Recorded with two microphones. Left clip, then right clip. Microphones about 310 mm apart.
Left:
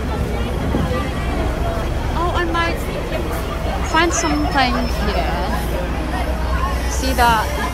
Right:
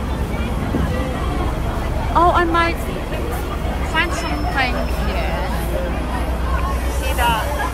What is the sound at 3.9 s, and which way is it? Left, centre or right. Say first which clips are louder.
Speech: left 4 dB; centre.